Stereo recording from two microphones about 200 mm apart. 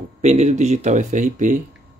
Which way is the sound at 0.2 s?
35° right (ahead or behind).